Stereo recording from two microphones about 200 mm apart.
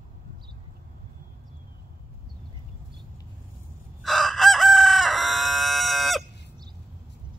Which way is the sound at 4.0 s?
Centre (ahead or behind).